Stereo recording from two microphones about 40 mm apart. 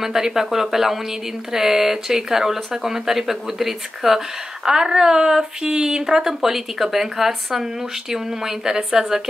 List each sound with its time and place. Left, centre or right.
0.0 s speech: centre